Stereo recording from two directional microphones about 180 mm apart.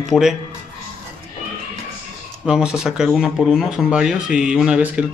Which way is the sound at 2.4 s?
5° right (ahead or behind).